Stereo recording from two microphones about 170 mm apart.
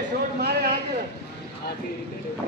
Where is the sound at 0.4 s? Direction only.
65° right (ahead or behind).